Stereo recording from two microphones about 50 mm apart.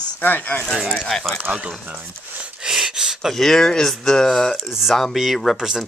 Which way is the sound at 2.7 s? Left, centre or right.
Centre.